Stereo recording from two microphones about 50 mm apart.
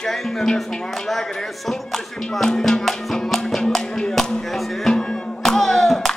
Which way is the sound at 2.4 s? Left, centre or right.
Centre.